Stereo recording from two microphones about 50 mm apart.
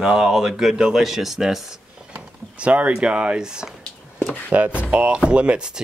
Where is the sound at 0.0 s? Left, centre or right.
Centre.